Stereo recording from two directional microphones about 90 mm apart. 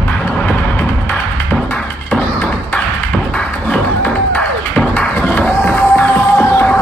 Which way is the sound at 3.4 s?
20° left (ahead or behind).